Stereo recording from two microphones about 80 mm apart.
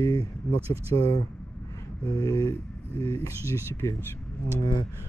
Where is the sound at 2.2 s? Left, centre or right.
Left.